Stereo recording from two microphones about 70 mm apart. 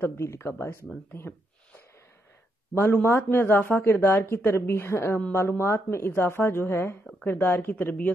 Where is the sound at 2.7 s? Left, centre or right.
Left.